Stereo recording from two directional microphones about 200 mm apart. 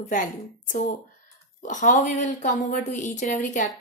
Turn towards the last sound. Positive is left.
turn(degrees=40)  # may be behind; listen again after turning